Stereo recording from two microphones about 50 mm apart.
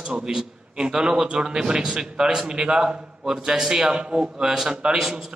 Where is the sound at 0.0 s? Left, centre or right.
Centre.